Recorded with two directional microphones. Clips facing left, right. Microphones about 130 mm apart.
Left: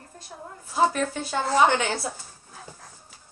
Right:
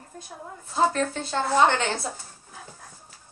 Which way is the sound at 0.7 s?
10° left (ahead or behind).